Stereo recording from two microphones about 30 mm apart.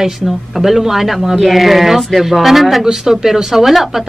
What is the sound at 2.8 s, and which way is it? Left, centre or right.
Speech, centre.